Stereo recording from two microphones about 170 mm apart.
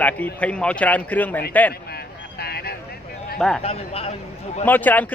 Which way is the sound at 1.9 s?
70° left (ahead or behind).